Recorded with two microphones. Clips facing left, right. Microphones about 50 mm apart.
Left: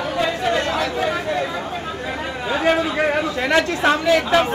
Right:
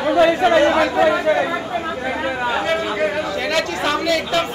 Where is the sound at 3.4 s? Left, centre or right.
Centre.